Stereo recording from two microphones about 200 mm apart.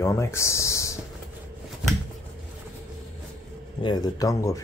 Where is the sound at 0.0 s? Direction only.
15° left (ahead or behind).